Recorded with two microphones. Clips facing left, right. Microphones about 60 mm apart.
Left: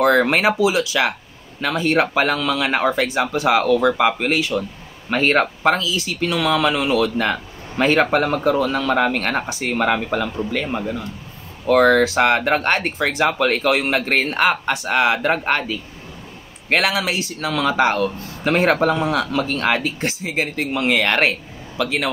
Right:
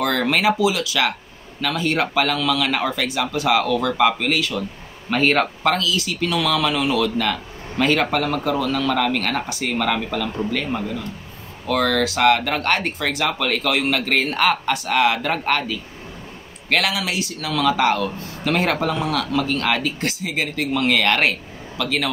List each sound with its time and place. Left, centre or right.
0.0 s speech: left
5.1 s speech: centre
11.6 s speech: left
16.6 s speech: left